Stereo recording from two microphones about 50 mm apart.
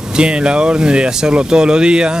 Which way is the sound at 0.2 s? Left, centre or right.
Centre.